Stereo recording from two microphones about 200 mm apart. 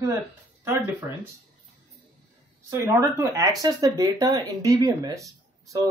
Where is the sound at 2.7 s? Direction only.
15° right (ahead or behind).